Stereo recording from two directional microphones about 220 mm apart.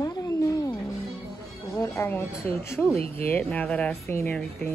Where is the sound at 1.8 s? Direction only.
15° left (ahead or behind).